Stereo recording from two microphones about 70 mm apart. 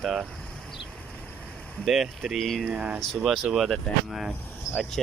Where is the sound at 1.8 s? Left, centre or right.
Centre.